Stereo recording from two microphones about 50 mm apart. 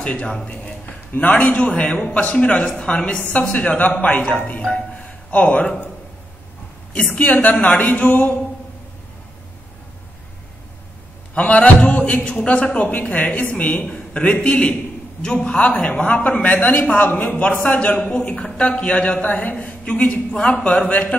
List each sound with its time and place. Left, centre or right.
0.0 s speech: left
3.3 s a woman's voice: left
4.6 s speech: centre
6.9 s a woman's voice: left
11.3 s a woman's voice: left